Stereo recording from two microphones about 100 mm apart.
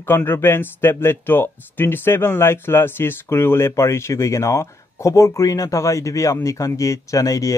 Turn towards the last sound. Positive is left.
turn(degrees=35)  # may be behind; listen again after turning